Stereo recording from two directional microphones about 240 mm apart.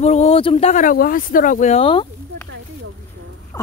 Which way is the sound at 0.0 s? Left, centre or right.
Left.